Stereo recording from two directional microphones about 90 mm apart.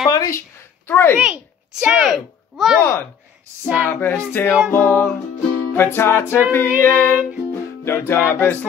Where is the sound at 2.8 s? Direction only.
25° left (ahead or behind).